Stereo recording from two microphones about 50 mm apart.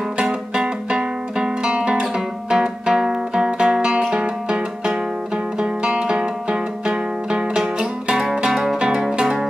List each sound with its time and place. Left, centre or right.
0.2 s music: centre
8.5 s zither: centre
8.7 s music: centre